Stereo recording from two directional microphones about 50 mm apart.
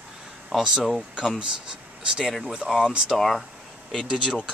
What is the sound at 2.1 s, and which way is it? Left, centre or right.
Speech, centre.